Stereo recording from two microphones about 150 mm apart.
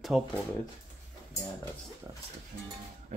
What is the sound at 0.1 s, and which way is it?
Speech, centre (ahead or behind).